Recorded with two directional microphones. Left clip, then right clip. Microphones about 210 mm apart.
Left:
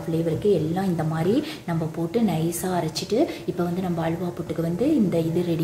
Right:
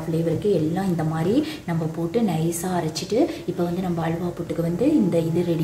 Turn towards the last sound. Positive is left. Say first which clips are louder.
# right 2 dB
turn(degrees=15)  # may be behind; listen again after turning